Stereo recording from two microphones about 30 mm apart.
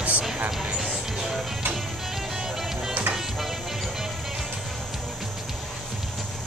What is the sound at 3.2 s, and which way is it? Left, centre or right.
Music, centre.